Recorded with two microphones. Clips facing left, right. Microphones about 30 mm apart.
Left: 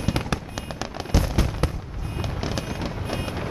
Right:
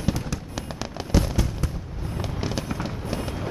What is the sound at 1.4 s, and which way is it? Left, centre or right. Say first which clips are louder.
Fireworks: left 2 dB; left.